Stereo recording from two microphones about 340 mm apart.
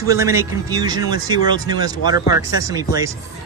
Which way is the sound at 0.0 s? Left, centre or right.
Centre.